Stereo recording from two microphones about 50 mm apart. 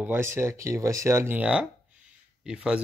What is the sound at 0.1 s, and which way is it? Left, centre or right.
Speech, right.